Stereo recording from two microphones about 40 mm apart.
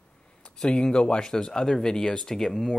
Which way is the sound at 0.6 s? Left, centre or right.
Centre.